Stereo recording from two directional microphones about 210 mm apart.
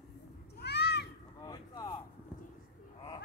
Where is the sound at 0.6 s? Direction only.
55° left (ahead or behind).